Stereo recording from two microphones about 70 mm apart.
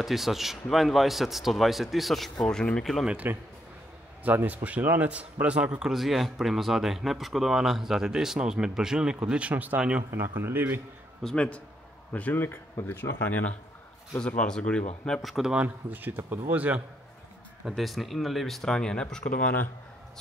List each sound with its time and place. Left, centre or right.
0.0 s a man's voice: centre
2.3 s speech: centre
4.2 s a man's voice: right
10.1 s speech: right
11.2 s speech: centre
14.2 s speech: centre
15.2 s a man's voice: centre
15.5 s speech: right
17.6 s a man's voice: centre